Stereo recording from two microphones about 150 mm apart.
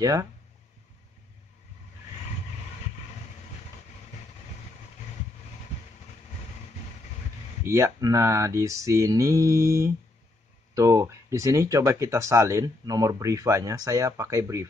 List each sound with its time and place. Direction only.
0.0 s speech: 25° right (ahead or behind)
7.6 s speech: 20° right (ahead or behind)